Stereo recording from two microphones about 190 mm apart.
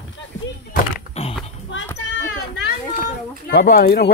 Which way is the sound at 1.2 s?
35° left (ahead or behind).